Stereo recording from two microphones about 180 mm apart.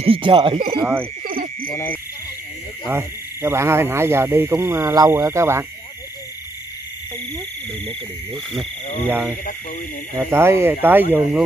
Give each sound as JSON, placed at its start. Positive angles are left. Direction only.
{"t": 0.0, "sound": "cricket", "side_deg": -30}
{"t": 0.7, "sound": "speech", "side_deg": -10}
{"t": 1.2, "sound": "insect", "side_deg": -55}
{"t": 1.7, "sound": "hoot", "side_deg": 10}
{"t": 2.9, "sound": "speech", "side_deg": -15}
{"t": 10.1, "sound": "speech", "side_deg": -15}